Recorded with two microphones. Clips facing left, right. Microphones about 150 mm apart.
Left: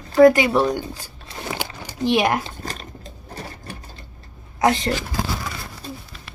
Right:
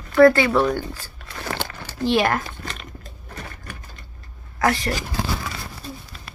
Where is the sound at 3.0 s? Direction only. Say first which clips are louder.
Left 3 dB; 35° left (ahead or behind).